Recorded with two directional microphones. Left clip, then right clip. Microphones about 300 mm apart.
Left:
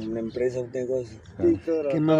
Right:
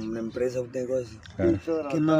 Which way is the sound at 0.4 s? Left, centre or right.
Right.